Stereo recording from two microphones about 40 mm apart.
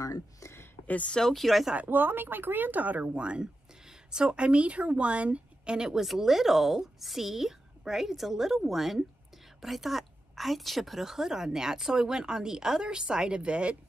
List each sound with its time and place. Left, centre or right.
1.2 s speech: centre
1.9 s speech: right
3.2 s a woman's voice: right
5.8 s a woman's voice: centre